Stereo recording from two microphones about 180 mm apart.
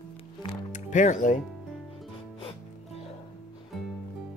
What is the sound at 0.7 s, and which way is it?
Speech, 40° left (ahead or behind).